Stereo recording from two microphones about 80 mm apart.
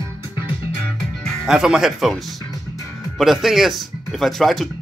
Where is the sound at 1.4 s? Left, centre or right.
Centre.